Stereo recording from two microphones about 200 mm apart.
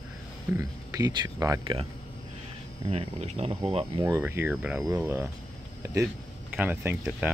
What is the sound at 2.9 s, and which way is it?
Speech, 30° right (ahead or behind).